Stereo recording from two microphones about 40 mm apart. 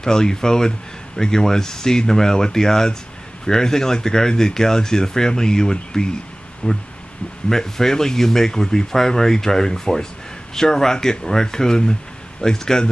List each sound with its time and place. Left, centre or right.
0.0 s speech: centre
7.4 s speech: centre